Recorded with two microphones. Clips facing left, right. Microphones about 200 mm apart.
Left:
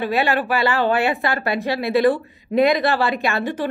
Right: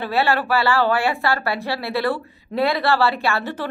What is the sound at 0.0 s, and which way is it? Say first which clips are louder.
A woman's voice: left 1 dB; 15° left (ahead or behind).